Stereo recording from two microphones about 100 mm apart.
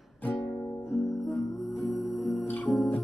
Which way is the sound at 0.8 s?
Centre (ahead or behind).